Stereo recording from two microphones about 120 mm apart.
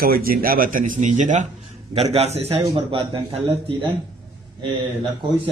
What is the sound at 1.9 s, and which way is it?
Speech, 60° right (ahead or behind).